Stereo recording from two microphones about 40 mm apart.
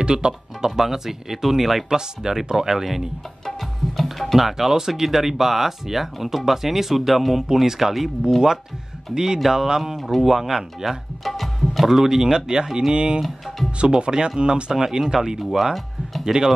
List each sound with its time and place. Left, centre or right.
0.0 s music: centre
0.7 s speech: centre
3.4 s tabla: centre
4.4 s speech: centre
9.1 s speech: centre
9.9 s speech: centre
11.9 s speech: centre
16.3 s speech: centre